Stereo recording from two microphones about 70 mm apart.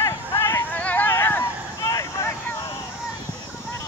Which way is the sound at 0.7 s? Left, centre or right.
Left.